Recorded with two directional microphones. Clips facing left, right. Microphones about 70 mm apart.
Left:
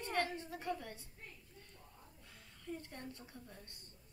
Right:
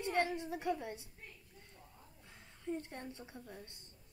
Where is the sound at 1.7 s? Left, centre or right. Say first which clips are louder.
Right 1 dB; right.